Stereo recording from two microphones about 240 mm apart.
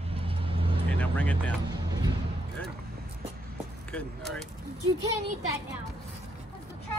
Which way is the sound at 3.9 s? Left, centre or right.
Centre.